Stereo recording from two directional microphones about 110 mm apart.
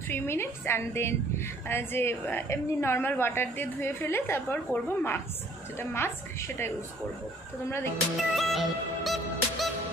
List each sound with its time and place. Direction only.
0.1 s a woman's voice: 20° left (ahead or behind)
8.2 s music: centre (ahead or behind)